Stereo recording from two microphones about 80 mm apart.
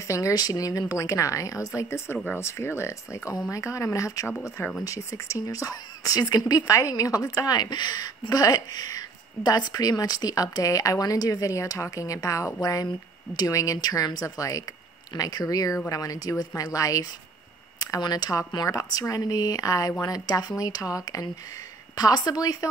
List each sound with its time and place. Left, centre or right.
0.0 s a woman's voice: left
4.3 s speech: centre
4.8 s speech: left
18.7 s speech: left